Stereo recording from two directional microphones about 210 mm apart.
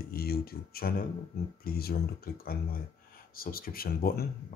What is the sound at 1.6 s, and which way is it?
Speech, 45° left (ahead or behind).